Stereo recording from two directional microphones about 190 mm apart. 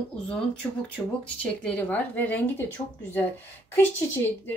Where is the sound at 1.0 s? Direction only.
10° left (ahead or behind).